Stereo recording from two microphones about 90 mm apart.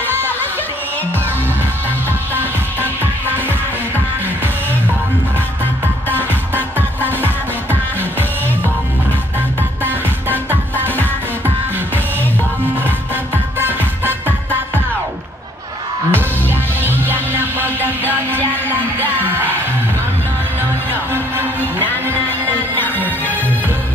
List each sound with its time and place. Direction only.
2.3 s music: 25° right (ahead or behind)
6.0 s music: 20° right (ahead or behind)
9.8 s music: 20° right (ahead or behind)
12.8 s music: 20° right (ahead or behind)
16.1 s music: 25° right (ahead or behind)
20.9 s music: 25° right (ahead or behind)
22.8 s music: 20° left (ahead or behind)